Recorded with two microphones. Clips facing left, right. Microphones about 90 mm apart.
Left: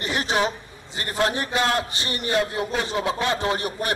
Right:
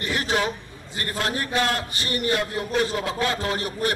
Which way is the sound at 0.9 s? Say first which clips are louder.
Left 3 dB; 20° left (ahead or behind).